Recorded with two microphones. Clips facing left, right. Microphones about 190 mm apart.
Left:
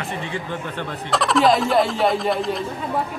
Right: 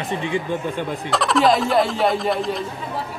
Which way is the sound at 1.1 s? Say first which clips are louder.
Even; centre (ahead or behind).